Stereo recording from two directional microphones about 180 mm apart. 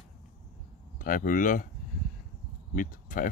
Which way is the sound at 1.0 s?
50° left (ahead or behind).